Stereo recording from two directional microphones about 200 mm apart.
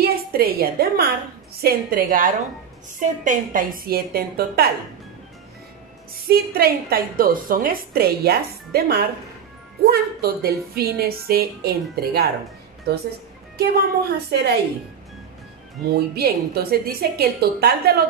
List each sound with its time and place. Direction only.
0.0 s a woman's voice: 50° right (ahead or behind)
6.2 s a woman's voice: 50° right (ahead or behind)
15.8 s a woman's voice: 50° right (ahead or behind)